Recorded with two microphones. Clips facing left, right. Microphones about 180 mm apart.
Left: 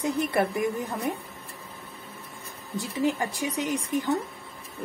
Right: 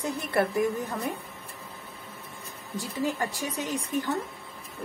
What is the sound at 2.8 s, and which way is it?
A woman's voice, 15° left (ahead or behind).